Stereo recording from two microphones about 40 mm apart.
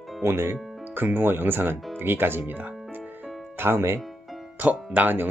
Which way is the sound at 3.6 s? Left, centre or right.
Right.